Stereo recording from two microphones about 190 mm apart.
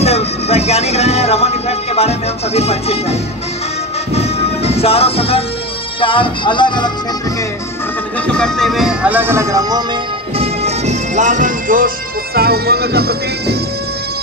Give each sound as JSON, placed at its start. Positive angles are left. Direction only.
{"t": 0.0, "sound": "music", "side_deg": 35}
{"t": 5.9, "sound": "speech", "side_deg": 25}
{"t": 8.3, "sound": "speech", "side_deg": 5}
{"t": 10.3, "sound": "music", "side_deg": -35}